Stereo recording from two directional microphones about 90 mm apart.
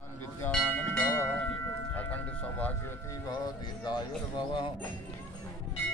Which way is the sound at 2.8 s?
30° left (ahead or behind).